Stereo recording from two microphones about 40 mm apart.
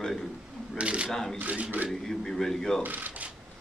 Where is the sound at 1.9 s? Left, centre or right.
Centre.